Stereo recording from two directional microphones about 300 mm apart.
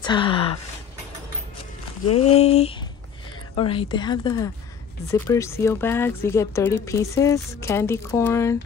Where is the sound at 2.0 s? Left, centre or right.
Left.